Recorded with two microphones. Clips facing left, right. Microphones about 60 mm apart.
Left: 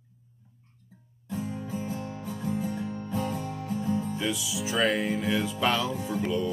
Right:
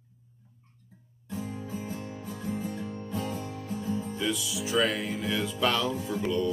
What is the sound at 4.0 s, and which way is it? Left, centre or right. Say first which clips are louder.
Music: left 1 dB; centre.